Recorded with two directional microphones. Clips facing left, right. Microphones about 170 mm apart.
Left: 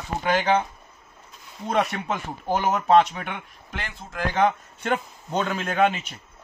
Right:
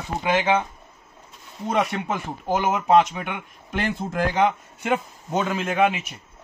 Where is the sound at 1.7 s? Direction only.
15° right (ahead or behind).